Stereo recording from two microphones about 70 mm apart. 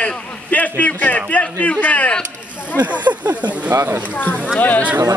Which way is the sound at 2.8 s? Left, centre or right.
Right.